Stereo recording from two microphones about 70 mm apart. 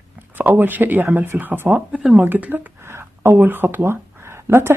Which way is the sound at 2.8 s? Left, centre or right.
Right.